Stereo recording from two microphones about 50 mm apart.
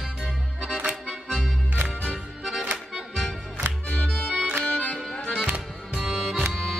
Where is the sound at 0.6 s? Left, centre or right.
Centre.